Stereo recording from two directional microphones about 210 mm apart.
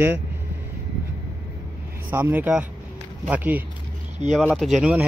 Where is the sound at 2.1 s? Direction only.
10° right (ahead or behind).